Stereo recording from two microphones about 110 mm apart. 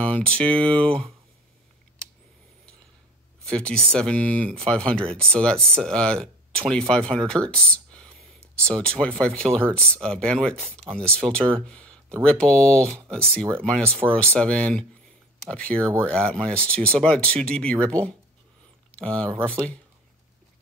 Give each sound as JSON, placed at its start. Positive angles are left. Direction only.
{"t": 0.0, "sound": "speech", "side_deg": 10}
{"t": 3.4, "sound": "speech", "side_deg": 10}
{"t": 13.8, "sound": "speech", "side_deg": -20}
{"t": 14.1, "sound": "speech", "side_deg": 10}